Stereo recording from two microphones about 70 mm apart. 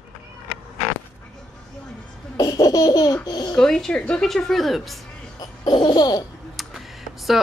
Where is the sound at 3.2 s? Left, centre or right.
Left.